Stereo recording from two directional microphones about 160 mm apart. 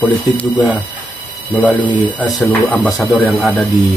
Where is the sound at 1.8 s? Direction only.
30° left (ahead or behind).